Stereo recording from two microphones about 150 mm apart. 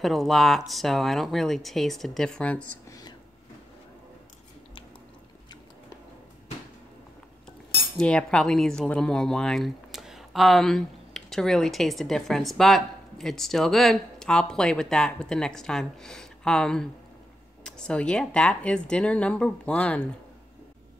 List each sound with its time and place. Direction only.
0.0 s speech: centre (ahead or behind)
2.9 s whispering: 25° left (ahead or behind)
8.0 s speech: 5° left (ahead or behind)